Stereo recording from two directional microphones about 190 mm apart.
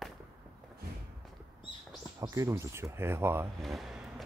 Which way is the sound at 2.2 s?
15° right (ahead or behind).